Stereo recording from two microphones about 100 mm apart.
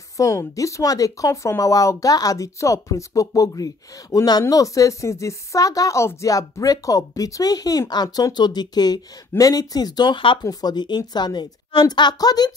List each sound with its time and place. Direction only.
0.2 s a woman's voice: 30° left (ahead or behind); by 10.4 s 55° left (ahead or behind)
10.4 s a woman's voice: 40° left (ahead or behind)